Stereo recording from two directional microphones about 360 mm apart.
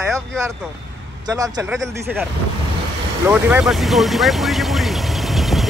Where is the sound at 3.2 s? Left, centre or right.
Centre.